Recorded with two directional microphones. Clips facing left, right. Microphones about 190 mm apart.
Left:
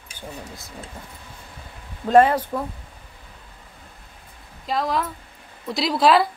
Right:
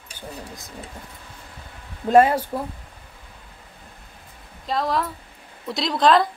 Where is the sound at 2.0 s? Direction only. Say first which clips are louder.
Even; 10° right (ahead or behind).